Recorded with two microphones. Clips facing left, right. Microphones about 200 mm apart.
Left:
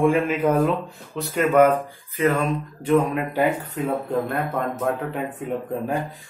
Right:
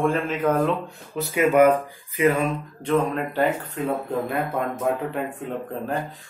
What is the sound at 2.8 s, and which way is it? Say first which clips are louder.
Speech: left 2 dB; 10° left (ahead or behind).